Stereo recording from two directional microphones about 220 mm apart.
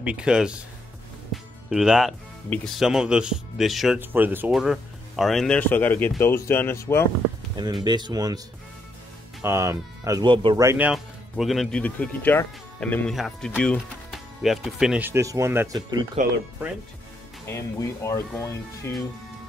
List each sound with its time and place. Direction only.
0.0 s speech: 5° right (ahead or behind)
1.3 s music: centre (ahead or behind)
2.5 s speech: centre (ahead or behind)
7.8 s speech: 20° right (ahead or behind)
9.4 s speech: 10° right (ahead or behind)
17.5 s speech: 15° left (ahead or behind)